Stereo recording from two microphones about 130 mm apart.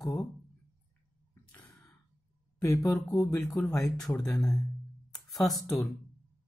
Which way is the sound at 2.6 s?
25° left (ahead or behind).